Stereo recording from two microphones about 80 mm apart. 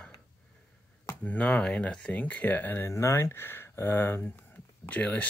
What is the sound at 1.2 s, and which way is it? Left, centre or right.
Speech, centre.